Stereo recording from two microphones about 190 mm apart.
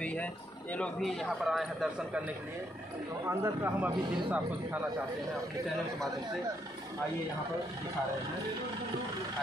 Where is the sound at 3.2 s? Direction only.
15° right (ahead or behind).